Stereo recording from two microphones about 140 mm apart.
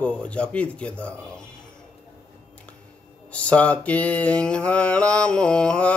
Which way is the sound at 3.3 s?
10° left (ahead or behind).